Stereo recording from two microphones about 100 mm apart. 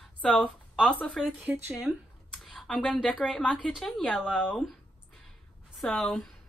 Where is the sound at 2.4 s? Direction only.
Centre (ahead or behind).